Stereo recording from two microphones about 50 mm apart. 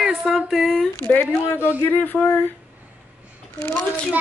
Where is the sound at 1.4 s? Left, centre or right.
Left.